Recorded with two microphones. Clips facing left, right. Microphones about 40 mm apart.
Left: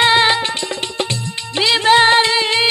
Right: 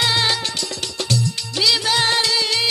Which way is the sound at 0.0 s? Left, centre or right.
Left.